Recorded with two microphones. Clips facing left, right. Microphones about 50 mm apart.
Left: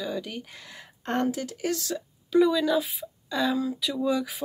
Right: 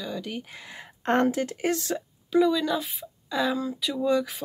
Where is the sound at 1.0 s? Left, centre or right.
Right.